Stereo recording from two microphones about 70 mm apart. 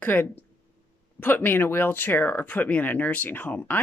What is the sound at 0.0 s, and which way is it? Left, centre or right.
Speech, left.